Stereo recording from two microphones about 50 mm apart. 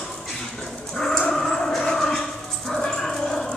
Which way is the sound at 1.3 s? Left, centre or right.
Centre.